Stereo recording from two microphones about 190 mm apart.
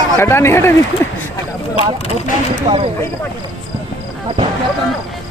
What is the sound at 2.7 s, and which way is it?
Speech, 35° right (ahead or behind).